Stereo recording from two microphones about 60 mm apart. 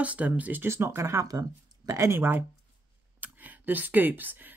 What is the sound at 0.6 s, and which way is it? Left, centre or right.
Speech, right.